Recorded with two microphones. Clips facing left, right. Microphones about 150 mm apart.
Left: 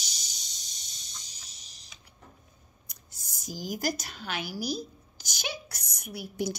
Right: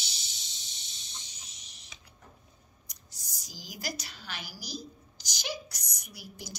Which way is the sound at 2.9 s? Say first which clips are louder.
Left 1 dB; 55° left (ahead or behind).